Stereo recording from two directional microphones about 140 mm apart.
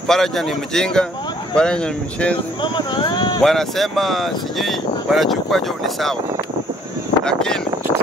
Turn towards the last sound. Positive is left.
turn(degrees=5)  # may be behind; listen again after turning